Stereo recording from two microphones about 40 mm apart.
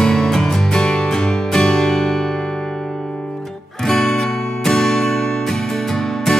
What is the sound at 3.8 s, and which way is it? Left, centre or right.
Music, centre.